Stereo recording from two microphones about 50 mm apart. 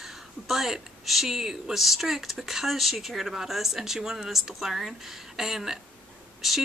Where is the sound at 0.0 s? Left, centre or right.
Centre.